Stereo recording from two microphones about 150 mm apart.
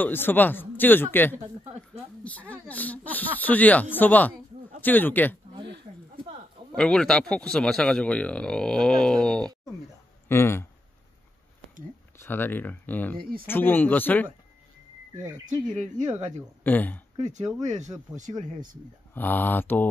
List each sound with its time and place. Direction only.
0.0 s speech: 15° left (ahead or behind)
1.6 s speech: 45° right (ahead or behind)
2.2 s speech: 10° left (ahead or behind)
6.7 s a man's voice: 5° left (ahead or behind)
10.2 s speech: 15° left (ahead or behind)
12.2 s speech: 15° left (ahead or behind)
13.2 s speech: 75° right (ahead or behind)
13.5 s speech: 15° left (ahead or behind)
15.4 s speech: 55° right (ahead or behind)
16.6 s speech: 10° left (ahead or behind)
17.2 s speech: 50° right (ahead or behind)
19.1 s speech: 10° left (ahead or behind)